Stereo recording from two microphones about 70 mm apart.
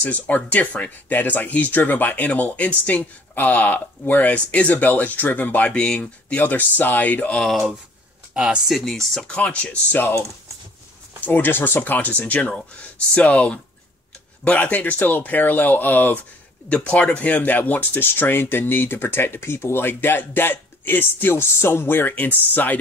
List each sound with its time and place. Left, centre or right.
0.0 s speech: left
5.7 s speech: centre
7.3 s speech: centre
9.3 s speech: centre
11.1 s speech: left